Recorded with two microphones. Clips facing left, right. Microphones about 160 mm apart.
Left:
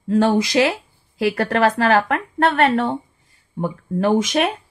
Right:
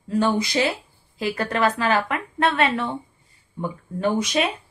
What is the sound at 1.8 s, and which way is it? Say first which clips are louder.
Speech: left 5 dB; 55° left (ahead or behind).